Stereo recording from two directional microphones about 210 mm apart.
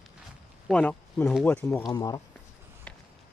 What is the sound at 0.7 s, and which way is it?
Speech, 5° left (ahead or behind).